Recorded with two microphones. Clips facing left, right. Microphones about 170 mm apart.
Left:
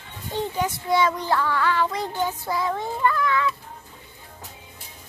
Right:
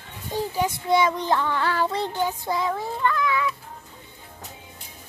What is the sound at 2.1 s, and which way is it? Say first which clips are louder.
Music: even; 15° right (ahead or behind).